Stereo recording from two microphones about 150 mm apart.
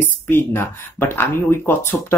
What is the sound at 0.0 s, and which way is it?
Speech, 10° left (ahead or behind).